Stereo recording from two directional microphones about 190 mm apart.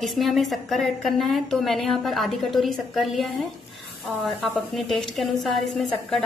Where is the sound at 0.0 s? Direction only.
Centre (ahead or behind).